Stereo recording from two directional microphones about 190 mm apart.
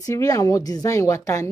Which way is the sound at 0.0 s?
20° left (ahead or behind).